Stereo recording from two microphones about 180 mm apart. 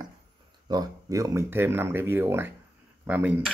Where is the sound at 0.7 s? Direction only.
20° right (ahead or behind).